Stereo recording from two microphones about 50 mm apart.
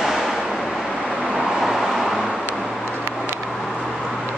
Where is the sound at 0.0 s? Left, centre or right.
Centre.